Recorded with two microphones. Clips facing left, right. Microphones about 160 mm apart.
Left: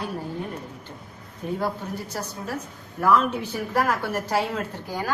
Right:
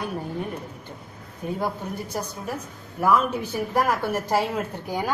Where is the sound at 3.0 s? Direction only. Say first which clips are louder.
Even; 15° right (ahead or behind).